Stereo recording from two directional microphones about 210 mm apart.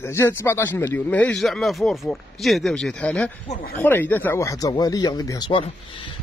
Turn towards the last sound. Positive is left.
turn(degrees=25)  # may be behind; listen again after turning